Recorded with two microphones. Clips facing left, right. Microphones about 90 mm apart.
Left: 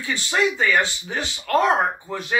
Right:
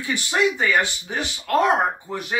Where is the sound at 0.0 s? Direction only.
20° right (ahead or behind).